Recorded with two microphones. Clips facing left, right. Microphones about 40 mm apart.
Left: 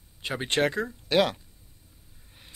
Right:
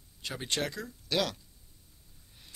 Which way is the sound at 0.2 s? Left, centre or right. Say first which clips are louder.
Left 8 dB; left.